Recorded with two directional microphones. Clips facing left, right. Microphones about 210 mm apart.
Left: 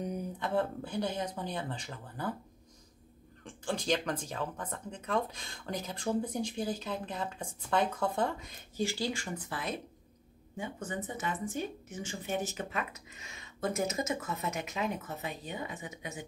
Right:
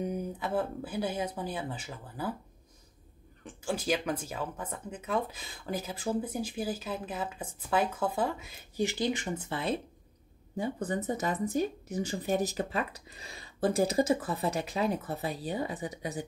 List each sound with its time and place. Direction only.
0.0 s speech: 5° right (ahead or behind)
3.4 s speech: 5° right (ahead or behind)
8.8 s speech: 20° right (ahead or behind)
10.5 s speech: 35° right (ahead or behind)